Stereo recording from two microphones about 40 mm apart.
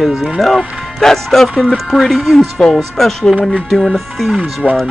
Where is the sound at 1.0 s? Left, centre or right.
Centre.